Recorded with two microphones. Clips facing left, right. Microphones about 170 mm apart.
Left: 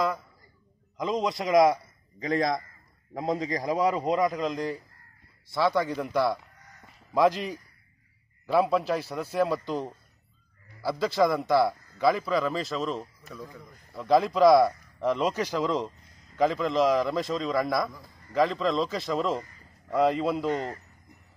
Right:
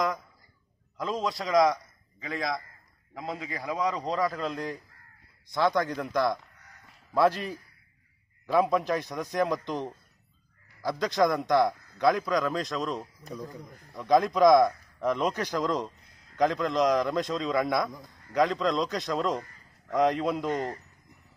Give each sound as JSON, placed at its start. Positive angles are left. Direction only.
{"t": 1.1, "sound": "a man's voice", "side_deg": 0}
{"t": 1.4, "sound": "a man's voice", "side_deg": 25}
{"t": 2.1, "sound": "a man's voice", "side_deg": 40}
{"t": 3.8, "sound": "a man's voice", "side_deg": 25}
{"t": 5.5, "sound": "a man's voice", "side_deg": 5}
{"t": 10.8, "sound": "a man's voice", "side_deg": 10}
{"t": 13.3, "sound": "a man's voice", "side_deg": -15}
{"t": 13.9, "sound": "a man's voice", "side_deg": 5}